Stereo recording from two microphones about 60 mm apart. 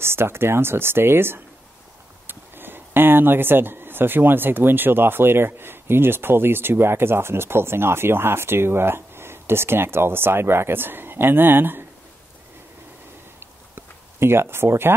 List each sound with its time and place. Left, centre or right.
0.0 s speech: right
13.7 s speech: right